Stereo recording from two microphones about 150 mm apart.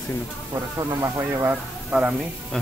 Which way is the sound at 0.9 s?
20° right (ahead or behind).